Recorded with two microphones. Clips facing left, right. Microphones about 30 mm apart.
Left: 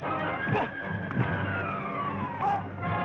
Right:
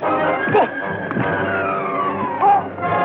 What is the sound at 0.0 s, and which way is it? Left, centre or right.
Music, right.